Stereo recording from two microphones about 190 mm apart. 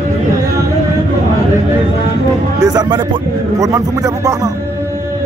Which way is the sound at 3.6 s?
20° right (ahead or behind).